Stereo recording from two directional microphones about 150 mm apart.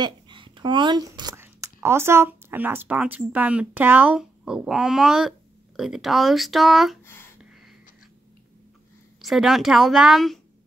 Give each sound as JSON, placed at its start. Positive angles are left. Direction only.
{"t": 0.0, "sound": "speech", "side_deg": -30}
{"t": 9.2, "sound": "speech", "side_deg": 0}